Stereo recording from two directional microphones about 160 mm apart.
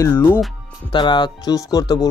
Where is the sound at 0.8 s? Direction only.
30° left (ahead or behind).